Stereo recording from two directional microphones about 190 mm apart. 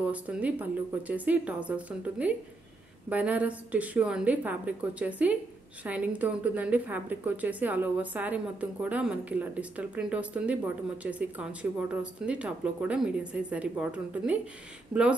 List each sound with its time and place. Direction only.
0.0 s a woman's voice: 5° right (ahead or behind)